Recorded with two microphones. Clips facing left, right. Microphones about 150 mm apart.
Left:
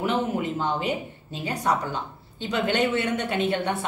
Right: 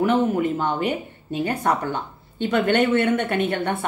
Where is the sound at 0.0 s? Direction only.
55° right (ahead or behind).